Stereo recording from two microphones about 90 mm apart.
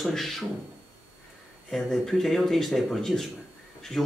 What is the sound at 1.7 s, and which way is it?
Speech, centre (ahead or behind).